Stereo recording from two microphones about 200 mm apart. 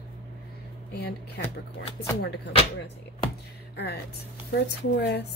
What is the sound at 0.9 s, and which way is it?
Speech, 55° left (ahead or behind).